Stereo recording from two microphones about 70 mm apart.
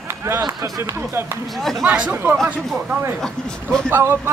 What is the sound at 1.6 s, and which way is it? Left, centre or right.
Speech, centre.